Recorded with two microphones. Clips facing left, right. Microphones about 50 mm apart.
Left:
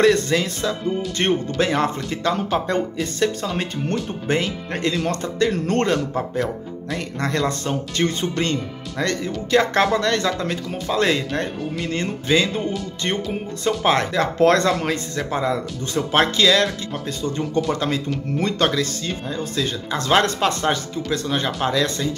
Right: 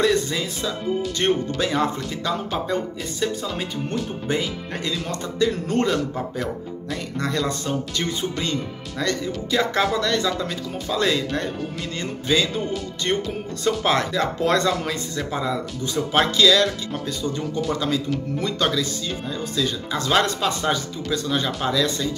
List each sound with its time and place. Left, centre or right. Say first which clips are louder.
0.0 s speech: left 4 dB; left
1.1 s speech: left 3 dB; left
2.6 s speech: left 3 dB; left
19.2 s speech: even; left